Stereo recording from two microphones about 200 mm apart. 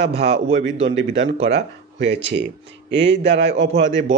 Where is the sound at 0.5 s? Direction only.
75° right (ahead or behind).